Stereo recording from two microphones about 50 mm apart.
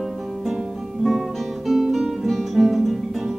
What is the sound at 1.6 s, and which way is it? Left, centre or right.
Guitar, centre.